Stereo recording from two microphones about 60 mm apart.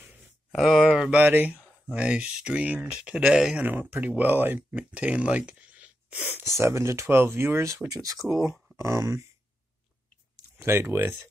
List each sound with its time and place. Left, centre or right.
0.5 s speech: centre
0.8 s speech: centre
1.2 s speech: right
1.6 s speech: centre
6.6 s speech: right
7.2 s speech: right
7.9 s speech: right
8.8 s speech: right
10.6 s speech: right